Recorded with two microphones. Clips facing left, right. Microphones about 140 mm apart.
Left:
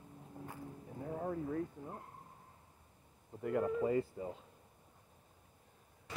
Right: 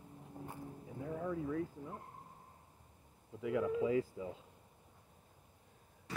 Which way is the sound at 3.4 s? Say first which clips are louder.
Left 1 dB; 90° right.